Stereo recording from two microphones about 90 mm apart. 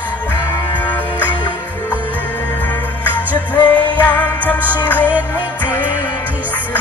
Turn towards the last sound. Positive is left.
turn(degrees=20)  # may be behind; listen again after turning